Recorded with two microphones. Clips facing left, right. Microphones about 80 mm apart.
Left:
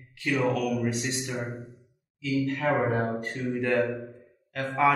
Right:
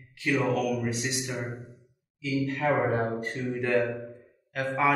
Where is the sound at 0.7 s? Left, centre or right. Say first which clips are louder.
Left 1 dB; centre.